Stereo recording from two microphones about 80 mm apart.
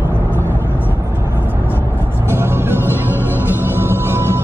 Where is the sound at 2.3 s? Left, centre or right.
Right.